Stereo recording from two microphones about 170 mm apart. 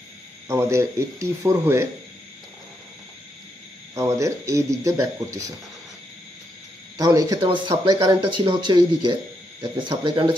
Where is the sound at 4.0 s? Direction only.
15° right (ahead or behind).